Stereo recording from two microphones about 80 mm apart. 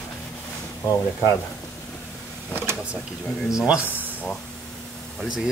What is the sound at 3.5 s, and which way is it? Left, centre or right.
Speech, centre.